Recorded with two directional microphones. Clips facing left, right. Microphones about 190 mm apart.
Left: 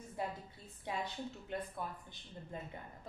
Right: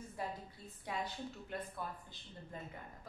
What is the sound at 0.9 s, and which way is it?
Speech, 25° left (ahead or behind).